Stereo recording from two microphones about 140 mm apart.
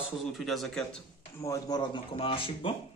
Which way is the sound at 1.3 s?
20° left (ahead or behind).